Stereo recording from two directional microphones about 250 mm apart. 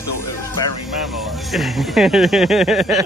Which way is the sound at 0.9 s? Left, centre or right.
Centre.